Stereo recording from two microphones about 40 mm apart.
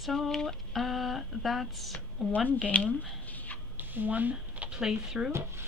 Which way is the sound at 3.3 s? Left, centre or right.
Left.